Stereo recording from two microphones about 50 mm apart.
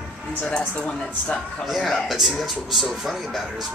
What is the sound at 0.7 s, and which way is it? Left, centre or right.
Speech, left.